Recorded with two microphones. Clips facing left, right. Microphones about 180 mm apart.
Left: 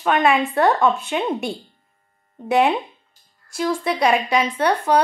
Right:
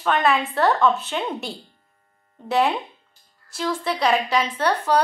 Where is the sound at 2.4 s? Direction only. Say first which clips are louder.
Left 3 dB; 15° left (ahead or behind).